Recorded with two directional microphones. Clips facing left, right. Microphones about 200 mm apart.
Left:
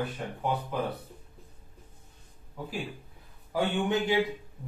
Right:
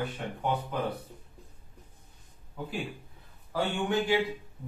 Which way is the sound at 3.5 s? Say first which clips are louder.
Left 1 dB; 20° left (ahead or behind).